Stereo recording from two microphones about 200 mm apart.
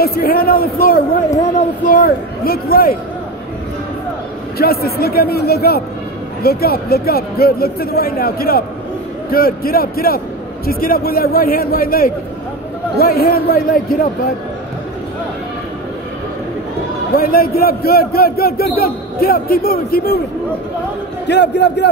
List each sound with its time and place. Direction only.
0.0 s a man's voice: 50° left (ahead or behind)
4.6 s a man's voice: 50° left (ahead or behind)
17.1 s a man's voice: 50° left (ahead or behind)
21.3 s a man's voice: 60° left (ahead or behind)